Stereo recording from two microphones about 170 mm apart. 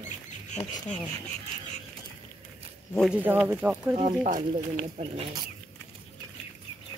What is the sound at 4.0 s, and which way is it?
Speech, 45° right (ahead or behind).